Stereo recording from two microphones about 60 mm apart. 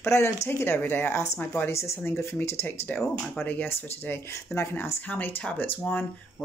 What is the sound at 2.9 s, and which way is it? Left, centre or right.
Speech, left.